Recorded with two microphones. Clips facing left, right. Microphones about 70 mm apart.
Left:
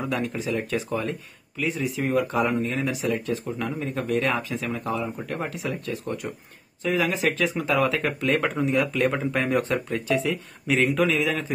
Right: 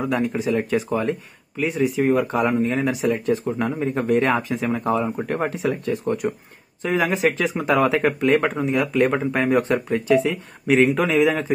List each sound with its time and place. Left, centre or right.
0.0 s speech: centre
0.7 s speech: centre
8.0 s speech: centre
8.9 s speech: centre